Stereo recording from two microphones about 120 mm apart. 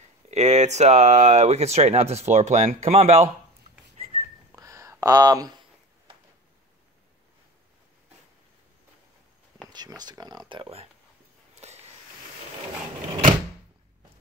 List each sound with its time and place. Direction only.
0.3 s speech: 70° right (ahead or behind)
2.7 s speech: 55° right (ahead or behind)
4.0 s whistling: 60° right (ahead or behind)
4.6 s a sound: 25° right (ahead or behind)
9.7 s speech: 35° right (ahead or behind); by 10.9 s 50° right (ahead or behind)
11.5 s a sound: 65° right (ahead or behind)